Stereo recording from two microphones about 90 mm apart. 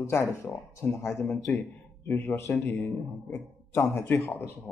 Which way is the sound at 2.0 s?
20° left (ahead or behind).